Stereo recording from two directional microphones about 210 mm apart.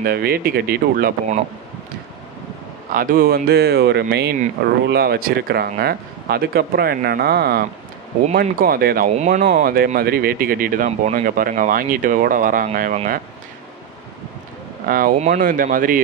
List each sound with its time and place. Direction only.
0.0 s speech: 45° right (ahead or behind)
2.9 s speech: 40° right (ahead or behind)
14.9 s speech: 40° right (ahead or behind)